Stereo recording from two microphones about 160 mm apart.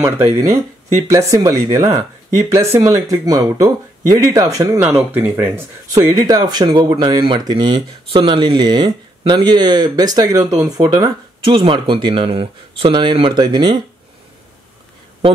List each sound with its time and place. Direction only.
0.4 s speech: 20° right (ahead or behind)